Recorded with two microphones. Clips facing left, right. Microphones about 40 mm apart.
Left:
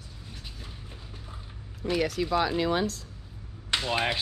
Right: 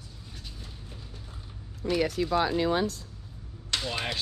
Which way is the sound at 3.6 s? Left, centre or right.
Left.